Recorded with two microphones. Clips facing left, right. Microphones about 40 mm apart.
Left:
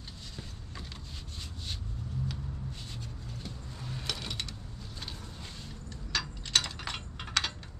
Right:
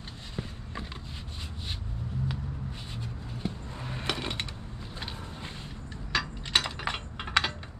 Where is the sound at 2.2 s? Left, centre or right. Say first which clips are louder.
Right 4 dB; right.